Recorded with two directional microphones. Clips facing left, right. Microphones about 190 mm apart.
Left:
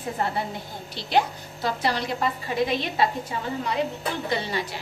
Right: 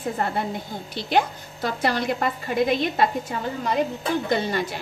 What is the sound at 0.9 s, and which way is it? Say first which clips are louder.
A woman's voice: right 1 dB; 50° right (ahead or behind).